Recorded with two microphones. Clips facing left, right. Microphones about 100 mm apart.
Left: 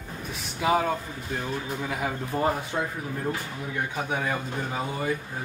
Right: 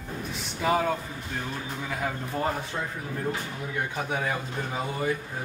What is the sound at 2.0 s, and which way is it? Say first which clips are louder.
Speech: left 1 dB; 10° left (ahead or behind).